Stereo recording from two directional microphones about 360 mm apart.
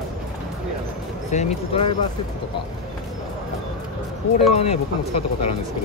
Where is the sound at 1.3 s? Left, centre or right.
Centre.